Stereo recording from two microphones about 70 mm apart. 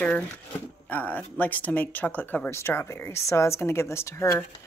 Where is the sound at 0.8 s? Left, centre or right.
Left.